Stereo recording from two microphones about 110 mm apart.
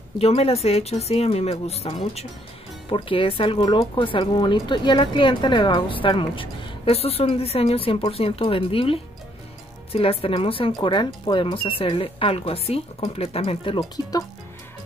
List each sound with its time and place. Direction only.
0.2 s speech: 65° left (ahead or behind)
2.9 s speech: 55° left (ahead or behind)
13.7 s speech: 35° left (ahead or behind)